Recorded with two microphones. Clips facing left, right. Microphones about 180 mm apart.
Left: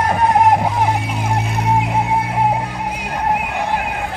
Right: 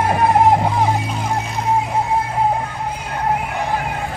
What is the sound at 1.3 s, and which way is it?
Music, 15° left (ahead or behind).